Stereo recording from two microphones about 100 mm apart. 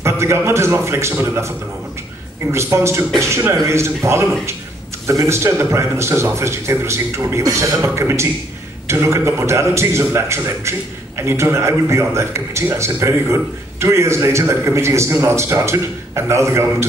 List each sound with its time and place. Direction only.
0.0 s a man's voice: 25° right (ahead or behind)
2.5 s a man's voice: 30° right (ahead or behind)